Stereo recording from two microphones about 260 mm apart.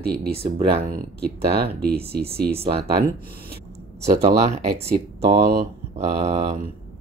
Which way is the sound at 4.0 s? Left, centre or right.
Right.